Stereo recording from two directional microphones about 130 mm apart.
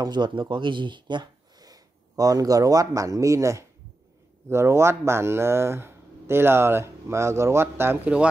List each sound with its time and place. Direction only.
0.0 s speech: 35° right (ahead or behind); by 8.3 s 10° right (ahead or behind)